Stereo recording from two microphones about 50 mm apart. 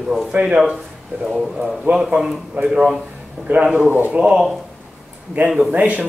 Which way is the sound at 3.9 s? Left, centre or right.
Right.